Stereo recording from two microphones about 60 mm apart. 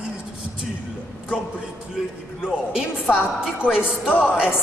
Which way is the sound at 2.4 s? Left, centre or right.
Centre.